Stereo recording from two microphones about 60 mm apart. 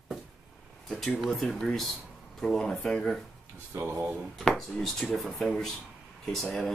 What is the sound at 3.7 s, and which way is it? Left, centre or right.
Speech, right.